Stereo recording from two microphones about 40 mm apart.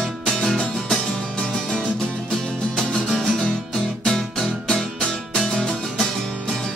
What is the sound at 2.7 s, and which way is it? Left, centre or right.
Music, centre.